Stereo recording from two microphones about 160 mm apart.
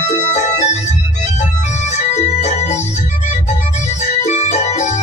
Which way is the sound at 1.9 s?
45° left (ahead or behind).